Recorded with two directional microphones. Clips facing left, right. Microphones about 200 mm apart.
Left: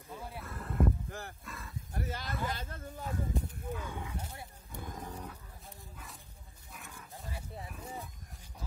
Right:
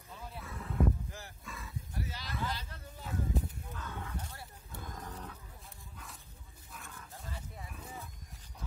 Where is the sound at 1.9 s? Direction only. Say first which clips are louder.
Left 5 dB; 50° left (ahead or behind).